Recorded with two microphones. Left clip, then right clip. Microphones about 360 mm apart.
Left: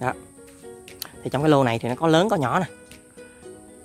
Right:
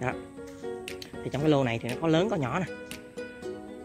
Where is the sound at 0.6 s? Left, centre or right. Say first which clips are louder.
Right 6 dB; right.